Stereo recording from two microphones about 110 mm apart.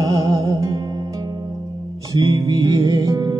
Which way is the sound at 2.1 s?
40° right (ahead or behind).